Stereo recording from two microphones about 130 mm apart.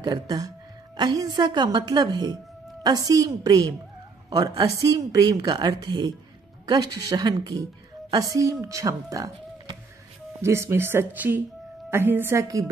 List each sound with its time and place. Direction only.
0.0 s a woman's voice: 30° right (ahead or behind)